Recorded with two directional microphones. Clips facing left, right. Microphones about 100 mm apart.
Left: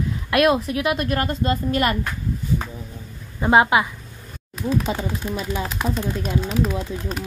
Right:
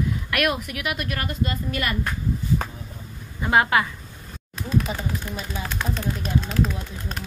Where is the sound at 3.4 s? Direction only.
20° left (ahead or behind).